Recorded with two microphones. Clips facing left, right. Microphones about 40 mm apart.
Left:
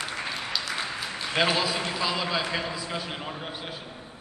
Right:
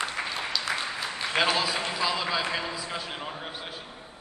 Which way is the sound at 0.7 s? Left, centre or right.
Centre.